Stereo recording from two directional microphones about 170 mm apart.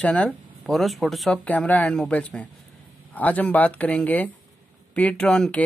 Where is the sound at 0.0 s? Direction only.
5° left (ahead or behind).